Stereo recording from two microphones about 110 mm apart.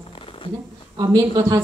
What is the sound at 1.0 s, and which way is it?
Speech, 35° right (ahead or behind).